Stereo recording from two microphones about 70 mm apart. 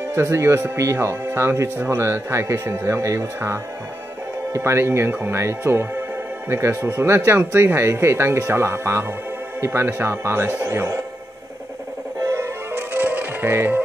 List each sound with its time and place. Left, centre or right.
0.1 s speech: right
12.7 s music: right